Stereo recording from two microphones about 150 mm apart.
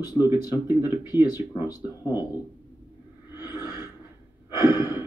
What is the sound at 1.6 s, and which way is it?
Speech, 25° left (ahead or behind).